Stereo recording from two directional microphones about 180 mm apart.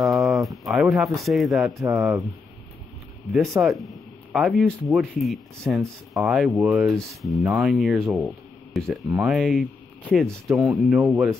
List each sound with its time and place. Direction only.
0.0 s a sound: centre (ahead or behind)
1.8 s speech: 15° right (ahead or behind)
3.6 s speech: centre (ahead or behind)